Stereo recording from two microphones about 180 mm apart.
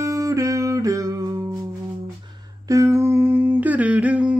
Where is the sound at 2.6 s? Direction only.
15° right (ahead or behind).